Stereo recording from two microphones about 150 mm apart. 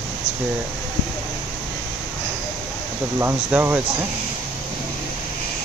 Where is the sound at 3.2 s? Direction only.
15° right (ahead or behind).